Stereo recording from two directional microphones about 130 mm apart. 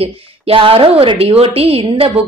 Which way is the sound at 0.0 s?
45° right (ahead or behind).